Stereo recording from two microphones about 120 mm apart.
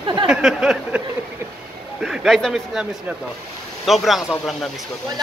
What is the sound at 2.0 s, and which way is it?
Speech, 5° right (ahead or behind).